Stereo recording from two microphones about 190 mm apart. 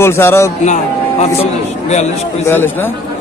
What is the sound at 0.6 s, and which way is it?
A man's voice, 40° left (ahead or behind).